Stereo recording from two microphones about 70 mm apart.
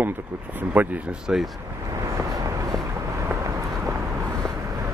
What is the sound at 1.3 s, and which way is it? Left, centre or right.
Speech, centre.